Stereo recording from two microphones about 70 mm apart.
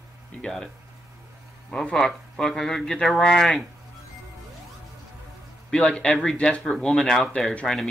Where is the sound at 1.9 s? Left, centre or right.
Centre.